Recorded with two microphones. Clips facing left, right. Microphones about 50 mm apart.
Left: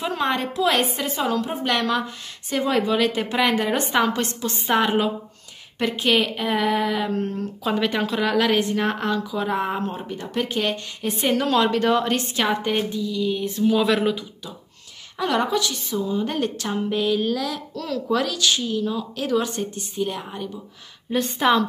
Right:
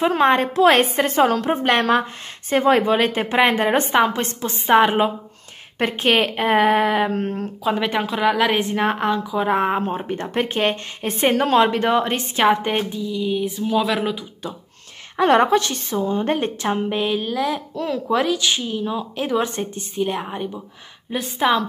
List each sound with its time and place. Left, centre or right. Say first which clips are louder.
0.2 s a woman's voice: right 6 dB; right
5.8 s a woman's voice: right 2 dB; right
7.7 s a woman's voice: left 1 dB; centre
15.1 s a woman's voice: right 7 dB; right
16.3 s speech: right 3 dB; right
21.1 s a woman's voice: even; centre